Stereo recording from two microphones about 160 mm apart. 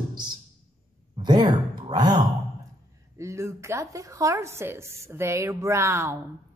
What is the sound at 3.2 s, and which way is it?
A woman's voice, 20° right (ahead or behind).